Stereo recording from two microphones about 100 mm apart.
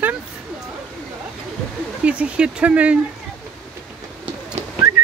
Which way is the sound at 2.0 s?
15° right (ahead or behind).